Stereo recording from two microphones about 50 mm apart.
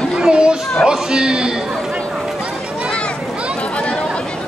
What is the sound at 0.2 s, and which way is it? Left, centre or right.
Chatter, centre.